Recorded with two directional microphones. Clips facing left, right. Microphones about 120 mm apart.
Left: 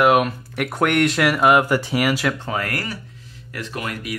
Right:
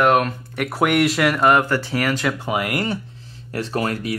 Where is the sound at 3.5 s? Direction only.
35° right (ahead or behind).